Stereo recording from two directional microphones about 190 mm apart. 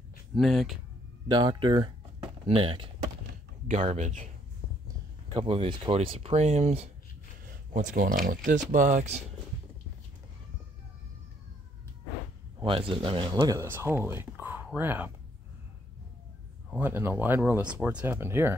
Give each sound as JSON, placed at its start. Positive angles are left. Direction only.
{"t": 0.3, "sound": "speech", "side_deg": 0}
{"t": 1.3, "sound": "speech", "side_deg": -25}
{"t": 3.8, "sound": "speech", "side_deg": -35}
{"t": 5.3, "sound": "speech", "side_deg": -25}
{"t": 7.4, "sound": "speech", "side_deg": -45}
{"t": 12.5, "sound": "speech", "side_deg": -30}
{"t": 16.7, "sound": "speech", "side_deg": -10}